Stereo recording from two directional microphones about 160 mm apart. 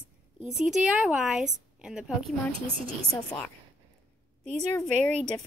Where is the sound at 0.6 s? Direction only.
5° right (ahead or behind).